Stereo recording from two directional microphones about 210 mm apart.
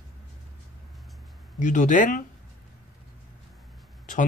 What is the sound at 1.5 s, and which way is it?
Speech, 35° left (ahead or behind).